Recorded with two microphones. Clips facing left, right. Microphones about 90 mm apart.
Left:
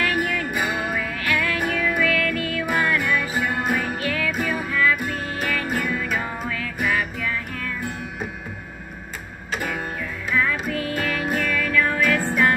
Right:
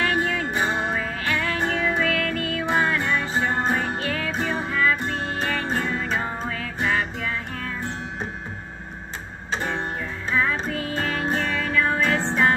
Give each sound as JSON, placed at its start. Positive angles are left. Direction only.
{"t": 0.0, "sound": "music", "side_deg": -30}
{"t": 9.5, "sound": "guitar", "side_deg": -30}
{"t": 10.3, "sound": "music", "side_deg": -30}